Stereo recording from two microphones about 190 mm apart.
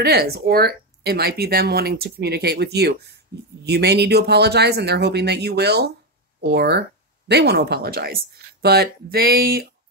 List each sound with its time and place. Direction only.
0.0 s speech: 55° right (ahead or behind)